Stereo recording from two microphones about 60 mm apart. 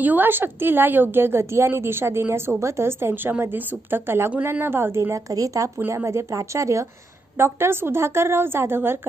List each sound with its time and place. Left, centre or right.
0.0 s a woman's voice: right
5.1 s speech: right
5.9 s speech: right
7.3 s speech: right